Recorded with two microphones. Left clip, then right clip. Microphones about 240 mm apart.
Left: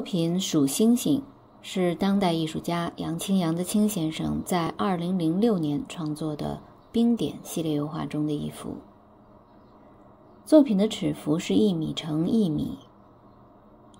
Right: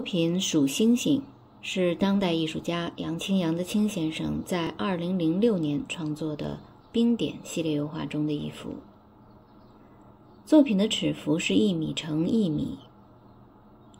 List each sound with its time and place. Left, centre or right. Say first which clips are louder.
0.0 s speech: right 1 dB; centre
10.5 s speech: left 2 dB; centre